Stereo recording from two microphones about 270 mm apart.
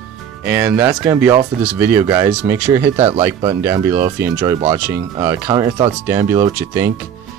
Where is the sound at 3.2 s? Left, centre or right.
Centre.